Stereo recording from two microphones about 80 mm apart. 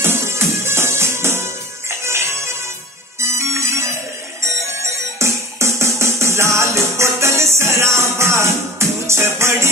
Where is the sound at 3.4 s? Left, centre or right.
Right.